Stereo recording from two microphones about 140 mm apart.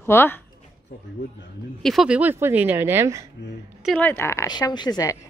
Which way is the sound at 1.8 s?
Centre (ahead or behind).